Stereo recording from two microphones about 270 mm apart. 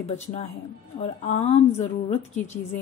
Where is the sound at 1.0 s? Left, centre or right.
Left.